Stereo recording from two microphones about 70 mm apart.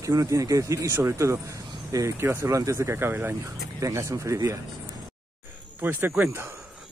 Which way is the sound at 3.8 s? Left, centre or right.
Right.